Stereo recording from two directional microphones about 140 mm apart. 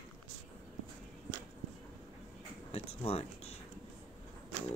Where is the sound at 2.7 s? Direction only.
45° left (ahead or behind).